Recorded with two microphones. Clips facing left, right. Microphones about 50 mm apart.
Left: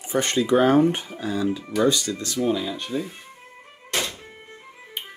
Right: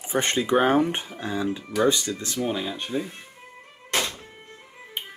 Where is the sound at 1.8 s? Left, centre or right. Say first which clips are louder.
Left 1 dB; right.